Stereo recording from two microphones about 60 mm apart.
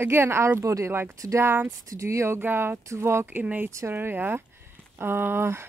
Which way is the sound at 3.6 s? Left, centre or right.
Right.